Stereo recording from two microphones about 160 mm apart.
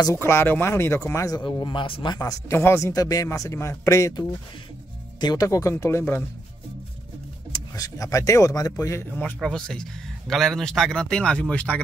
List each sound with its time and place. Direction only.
0.0 s speech: 15° left (ahead or behind); by 2.1 s 30° left (ahead or behind)
2.1 s speech: 15° left (ahead or behind)
7.5 s speech: 20° left (ahead or behind)